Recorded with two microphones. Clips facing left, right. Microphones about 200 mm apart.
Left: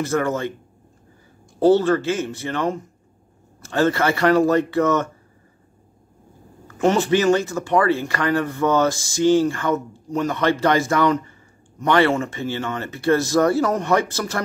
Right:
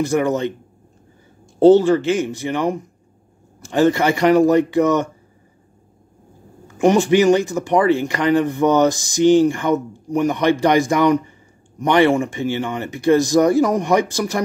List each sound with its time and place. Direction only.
0.0 s speech: 15° right (ahead or behind)
1.6 s speech: 15° right (ahead or behind)
6.8 s speech: 15° right (ahead or behind)